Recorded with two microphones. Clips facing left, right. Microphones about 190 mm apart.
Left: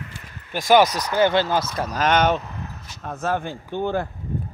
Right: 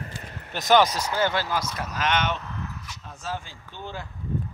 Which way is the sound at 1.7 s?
35° left (ahead or behind).